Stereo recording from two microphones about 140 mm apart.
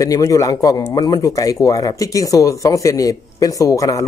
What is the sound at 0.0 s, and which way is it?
Speech, 25° left (ahead or behind).